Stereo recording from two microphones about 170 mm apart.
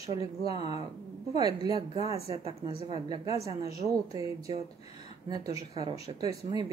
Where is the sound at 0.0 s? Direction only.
20° right (ahead or behind).